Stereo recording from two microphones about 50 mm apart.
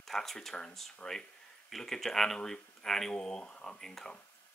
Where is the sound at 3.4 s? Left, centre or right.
Left.